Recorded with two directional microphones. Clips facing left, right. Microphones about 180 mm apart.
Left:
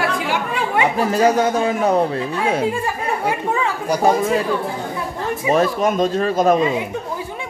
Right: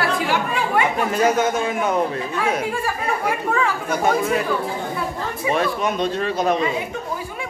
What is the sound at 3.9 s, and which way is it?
Speech, 35° left (ahead or behind).